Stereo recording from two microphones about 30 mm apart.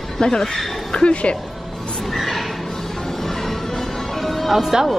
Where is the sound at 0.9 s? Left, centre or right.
Left.